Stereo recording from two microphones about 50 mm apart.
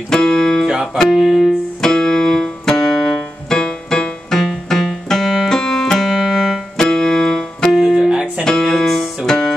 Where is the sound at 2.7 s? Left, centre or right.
Centre.